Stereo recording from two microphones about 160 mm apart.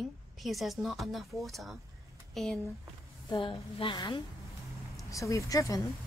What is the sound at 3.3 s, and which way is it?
A woman's voice, 30° left (ahead or behind).